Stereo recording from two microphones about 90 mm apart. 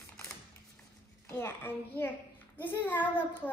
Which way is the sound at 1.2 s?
25° left (ahead or behind).